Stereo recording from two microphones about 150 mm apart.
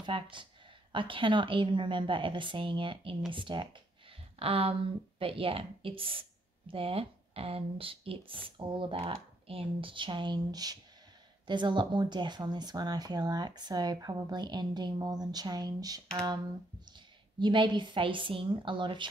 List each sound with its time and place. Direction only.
0.0 s speech: 35° right (ahead or behind)